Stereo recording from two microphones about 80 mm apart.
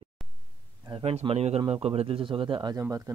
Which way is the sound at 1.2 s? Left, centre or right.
Right.